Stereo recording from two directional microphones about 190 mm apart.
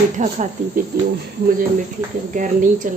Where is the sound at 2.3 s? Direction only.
40° right (ahead or behind).